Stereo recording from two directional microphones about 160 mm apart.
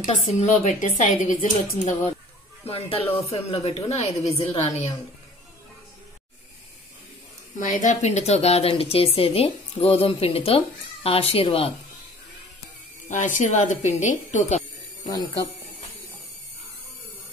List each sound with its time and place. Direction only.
0.0 s a woman's voice: 45° left (ahead or behind)
2.6 s speech: 40° left (ahead or behind)
7.5 s speech: 50° left (ahead or behind)
13.1 s a woman's voice: 50° left (ahead or behind)